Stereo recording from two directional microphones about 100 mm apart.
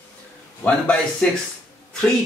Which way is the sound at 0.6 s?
10° left (ahead or behind).